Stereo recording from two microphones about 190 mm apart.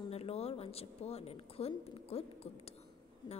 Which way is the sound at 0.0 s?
30° left (ahead or behind).